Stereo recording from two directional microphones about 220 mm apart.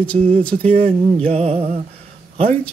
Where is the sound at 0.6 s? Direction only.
25° right (ahead or behind).